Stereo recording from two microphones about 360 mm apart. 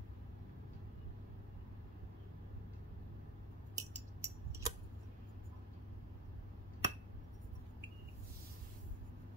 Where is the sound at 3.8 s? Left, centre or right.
Centre.